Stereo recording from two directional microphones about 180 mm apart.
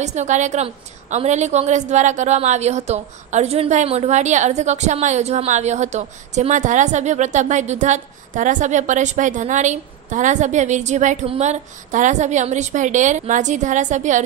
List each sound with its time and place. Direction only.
0.0 s a woman's voice: 40° right (ahead or behind)